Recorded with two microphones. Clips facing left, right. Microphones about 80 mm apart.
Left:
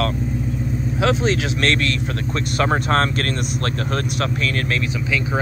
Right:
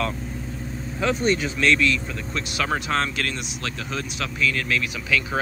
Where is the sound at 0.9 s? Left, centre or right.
Left.